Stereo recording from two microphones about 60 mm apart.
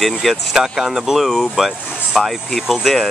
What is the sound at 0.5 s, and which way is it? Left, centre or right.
Speech, centre.